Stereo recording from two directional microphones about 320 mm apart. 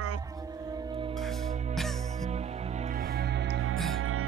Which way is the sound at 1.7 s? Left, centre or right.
Centre.